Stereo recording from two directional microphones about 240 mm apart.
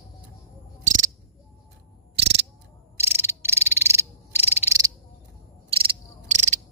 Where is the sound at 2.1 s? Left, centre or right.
Right.